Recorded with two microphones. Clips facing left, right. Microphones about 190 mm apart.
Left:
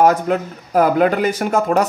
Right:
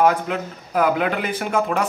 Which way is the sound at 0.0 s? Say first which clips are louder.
Left 4 dB; 40° left (ahead or behind).